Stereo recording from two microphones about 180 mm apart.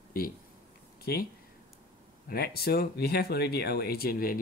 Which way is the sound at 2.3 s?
60° left (ahead or behind).